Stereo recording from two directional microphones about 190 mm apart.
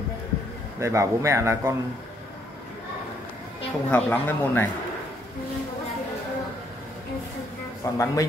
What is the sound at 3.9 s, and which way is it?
Speech, 10° left (ahead or behind).